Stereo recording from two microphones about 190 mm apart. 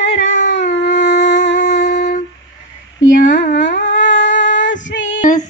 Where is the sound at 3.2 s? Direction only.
40° left (ahead or behind).